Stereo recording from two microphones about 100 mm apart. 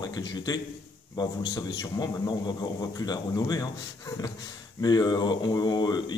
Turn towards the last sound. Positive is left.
turn(degrees=45)  # may be behind; listen again after turning